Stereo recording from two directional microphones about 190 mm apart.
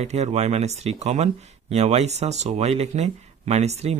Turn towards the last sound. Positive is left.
turn(degrees=-35)  # may be behind; listen again after turning